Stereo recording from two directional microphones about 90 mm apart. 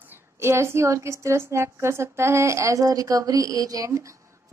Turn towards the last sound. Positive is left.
turn(degrees=-35)  # may be behind; listen again after turning